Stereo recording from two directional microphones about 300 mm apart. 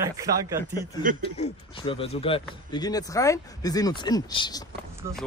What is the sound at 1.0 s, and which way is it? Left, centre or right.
Speech, right.